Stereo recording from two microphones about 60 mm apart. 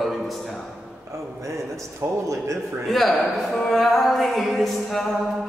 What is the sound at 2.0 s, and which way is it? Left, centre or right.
Speech, right.